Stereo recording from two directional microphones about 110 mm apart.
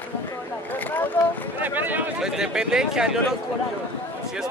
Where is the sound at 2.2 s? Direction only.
5° right (ahead or behind).